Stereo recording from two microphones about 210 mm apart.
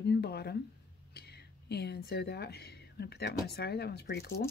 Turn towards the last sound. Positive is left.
turn(degrees=50)  # may be behind; listen again after turning